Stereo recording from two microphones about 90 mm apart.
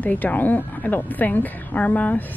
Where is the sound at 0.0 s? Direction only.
20° left (ahead or behind).